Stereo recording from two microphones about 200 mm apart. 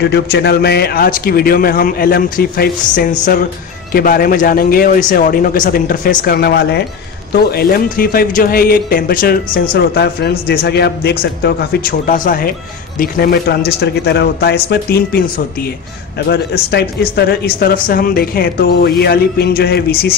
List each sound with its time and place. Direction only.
0.0 s speech: 55° left (ahead or behind)